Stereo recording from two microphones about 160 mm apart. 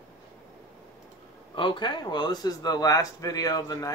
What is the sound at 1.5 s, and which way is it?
A man's voice, 30° left (ahead or behind).